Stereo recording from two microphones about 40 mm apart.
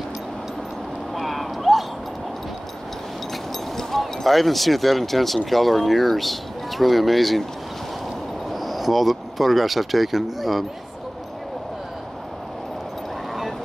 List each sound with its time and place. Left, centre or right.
1.1 s a sound: centre
3.7 s speech: centre
8.5 s speech: centre